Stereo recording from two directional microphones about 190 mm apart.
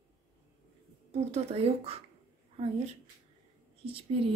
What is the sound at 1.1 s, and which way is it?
Speech, 35° right (ahead or behind).